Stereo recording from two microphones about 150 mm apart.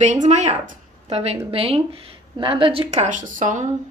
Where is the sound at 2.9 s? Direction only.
55° right (ahead or behind).